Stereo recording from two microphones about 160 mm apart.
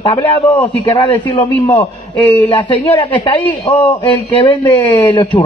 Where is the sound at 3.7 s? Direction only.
30° left (ahead or behind).